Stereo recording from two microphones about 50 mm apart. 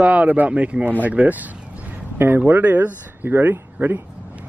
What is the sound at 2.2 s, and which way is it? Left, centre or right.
Speech, right.